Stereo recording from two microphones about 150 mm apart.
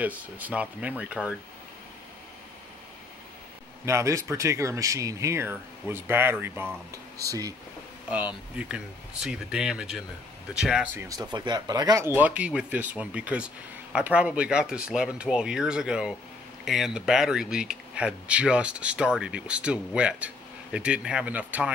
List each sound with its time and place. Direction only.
0.0 s speech: 10° right (ahead or behind)
3.8 s speech: 20° right (ahead or behind)
8.1 s speech: 10° right (ahead or behind)
11.1 s speech: 25° right (ahead or behind); by 21.7 s 10° right (ahead or behind)